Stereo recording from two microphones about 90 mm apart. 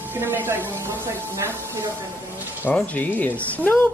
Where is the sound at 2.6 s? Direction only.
15° left (ahead or behind).